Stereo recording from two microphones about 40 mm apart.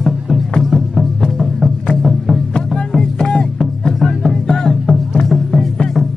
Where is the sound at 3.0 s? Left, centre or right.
Centre.